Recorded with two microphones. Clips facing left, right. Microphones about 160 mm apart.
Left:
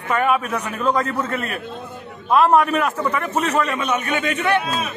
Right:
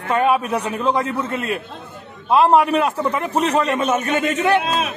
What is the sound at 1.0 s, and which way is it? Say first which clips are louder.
A man's voice: even; 10° right (ahead or behind).